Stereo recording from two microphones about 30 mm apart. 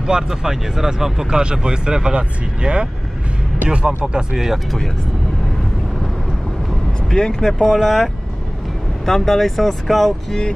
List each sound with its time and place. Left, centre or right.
0.0 s speech: centre
1.3 s speech: right
7.1 s speech: left
9.0 s speech: centre